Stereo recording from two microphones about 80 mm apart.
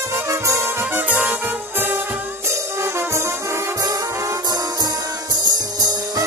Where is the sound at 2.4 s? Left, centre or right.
Right.